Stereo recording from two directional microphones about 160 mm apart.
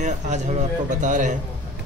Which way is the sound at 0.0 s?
45° right (ahead or behind).